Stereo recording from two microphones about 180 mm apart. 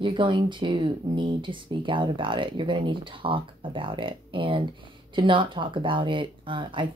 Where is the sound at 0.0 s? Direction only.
25° right (ahead or behind).